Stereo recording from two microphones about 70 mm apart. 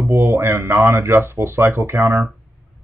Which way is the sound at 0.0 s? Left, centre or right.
Right.